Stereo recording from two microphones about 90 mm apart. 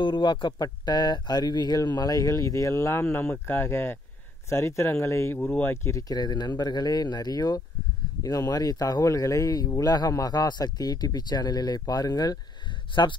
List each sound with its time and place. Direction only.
0.0 s a man's voice: 60° left (ahead or behind); by 5.8 s 25° left (ahead or behind)
5.9 s speech: 35° left (ahead or behind)
6.1 s a man's voice: 50° left (ahead or behind)
12.9 s speech: 60° left (ahead or behind)